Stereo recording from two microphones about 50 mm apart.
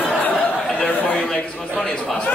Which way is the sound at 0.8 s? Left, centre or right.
Left.